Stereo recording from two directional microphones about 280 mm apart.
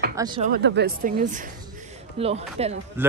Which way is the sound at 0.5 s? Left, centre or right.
Right.